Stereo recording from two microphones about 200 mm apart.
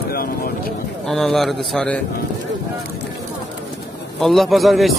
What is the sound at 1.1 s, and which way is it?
Speech, centre (ahead or behind).